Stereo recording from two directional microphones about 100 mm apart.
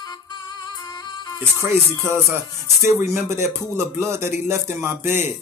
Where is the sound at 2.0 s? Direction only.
25° right (ahead or behind).